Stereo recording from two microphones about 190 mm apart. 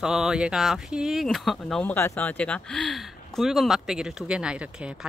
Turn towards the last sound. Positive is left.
turn(degrees=-5)  # may be behind; listen again after turning